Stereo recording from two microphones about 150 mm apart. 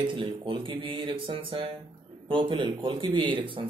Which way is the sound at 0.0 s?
35° right (ahead or behind).